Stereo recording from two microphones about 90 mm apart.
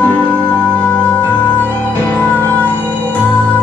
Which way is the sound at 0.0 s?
20° left (ahead or behind).